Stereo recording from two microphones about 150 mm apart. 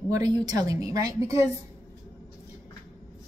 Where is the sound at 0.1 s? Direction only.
25° right (ahead or behind).